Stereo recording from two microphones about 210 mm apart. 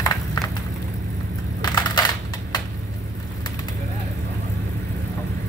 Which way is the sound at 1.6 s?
20° left (ahead or behind).